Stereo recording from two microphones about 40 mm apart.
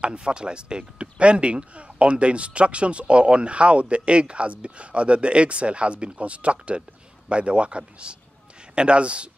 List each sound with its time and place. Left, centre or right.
0.0 s speech: right